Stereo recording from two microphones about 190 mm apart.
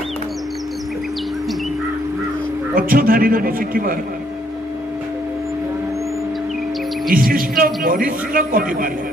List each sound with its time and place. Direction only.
2.7 s a man's voice: 50° right (ahead or behind)
7.1 s a man's voice: 50° right (ahead or behind)